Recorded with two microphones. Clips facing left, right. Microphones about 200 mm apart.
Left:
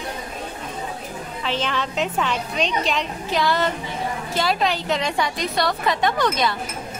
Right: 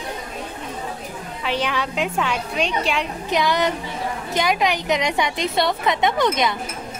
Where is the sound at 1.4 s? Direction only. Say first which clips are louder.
Right 2 dB; 10° right (ahead or behind).